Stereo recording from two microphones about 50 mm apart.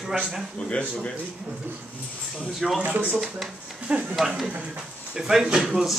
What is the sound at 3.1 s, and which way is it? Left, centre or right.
Speech, centre.